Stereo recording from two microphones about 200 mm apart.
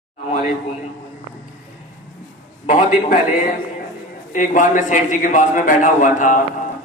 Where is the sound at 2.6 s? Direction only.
40° left (ahead or behind).